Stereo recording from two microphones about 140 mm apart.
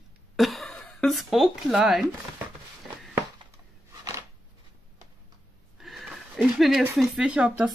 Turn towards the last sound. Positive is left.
turn(degrees=-10)  # may be behind; listen again after turning